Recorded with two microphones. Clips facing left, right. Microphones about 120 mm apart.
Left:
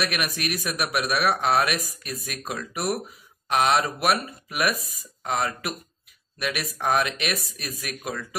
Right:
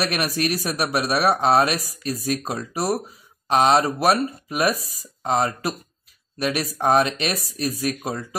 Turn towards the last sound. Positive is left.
turn(degrees=-30)  # may be behind; listen again after turning